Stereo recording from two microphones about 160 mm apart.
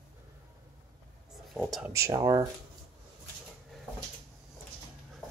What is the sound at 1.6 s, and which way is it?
Speech, centre (ahead or behind).